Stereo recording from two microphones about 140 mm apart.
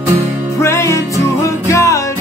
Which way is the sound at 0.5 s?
20° left (ahead or behind).